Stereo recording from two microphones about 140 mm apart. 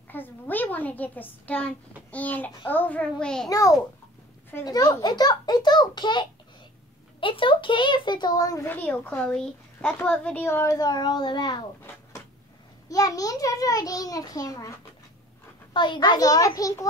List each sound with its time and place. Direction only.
0.1 s a child's voice: 15° left (ahead or behind)
3.4 s a child's voice: 25° left (ahead or behind)
8.6 s a child's voice: 15° left (ahead or behind); by 11.6 s 30° left (ahead or behind)
11.8 s a sound: 15° left (ahead or behind)
12.8 s a child's voice: 25° left (ahead or behind)
15.7 s a child's voice: 35° left (ahead or behind)